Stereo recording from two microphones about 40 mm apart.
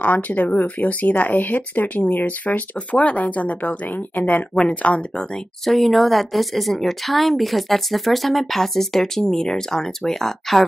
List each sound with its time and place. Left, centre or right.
0.0 s speech: left
4.8 s speech: left
5.7 s speech: centre